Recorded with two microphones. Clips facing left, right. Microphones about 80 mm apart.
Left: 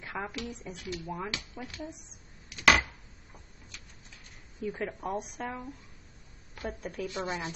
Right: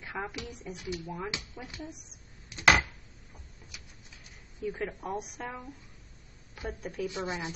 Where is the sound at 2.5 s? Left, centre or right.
Right.